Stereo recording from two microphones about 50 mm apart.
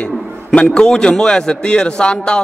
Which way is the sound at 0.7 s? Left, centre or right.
Centre.